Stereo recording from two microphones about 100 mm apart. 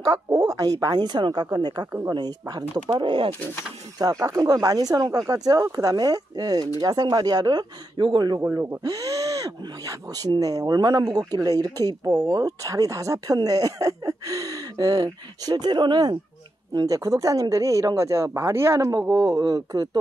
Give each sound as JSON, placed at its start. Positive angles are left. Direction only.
{"t": 0.0, "sound": "speech", "side_deg": -35}
{"t": 2.9, "sound": "speech", "side_deg": -55}
{"t": 4.0, "sound": "speech", "side_deg": -35}
{"t": 8.4, "sound": "speech", "side_deg": -30}
{"t": 16.7, "sound": "speech", "side_deg": -35}